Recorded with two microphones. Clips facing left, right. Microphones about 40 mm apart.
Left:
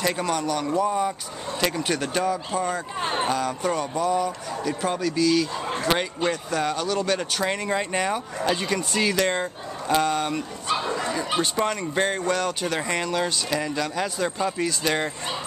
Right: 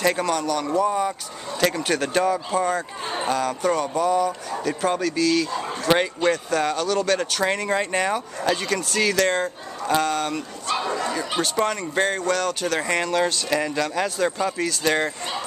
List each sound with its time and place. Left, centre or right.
0.0 s speech: centre
5.9 s a man's voice: centre
6.3 s speech: centre
8.4 s speech: centre
12.8 s speech: centre